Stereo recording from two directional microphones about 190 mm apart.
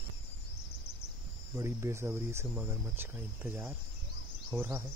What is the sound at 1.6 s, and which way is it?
Speech, 15° right (ahead or behind).